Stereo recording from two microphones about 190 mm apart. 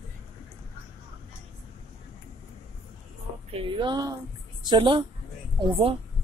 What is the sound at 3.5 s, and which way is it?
Speech, 25° right (ahead or behind).